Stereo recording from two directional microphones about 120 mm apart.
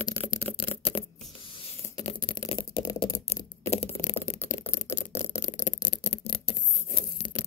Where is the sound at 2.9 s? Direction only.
35° left (ahead or behind).